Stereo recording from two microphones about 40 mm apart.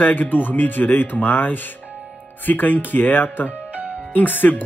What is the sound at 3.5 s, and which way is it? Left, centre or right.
Music, right.